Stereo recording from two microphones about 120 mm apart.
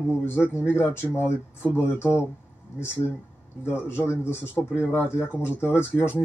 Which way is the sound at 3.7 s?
20° left (ahead or behind).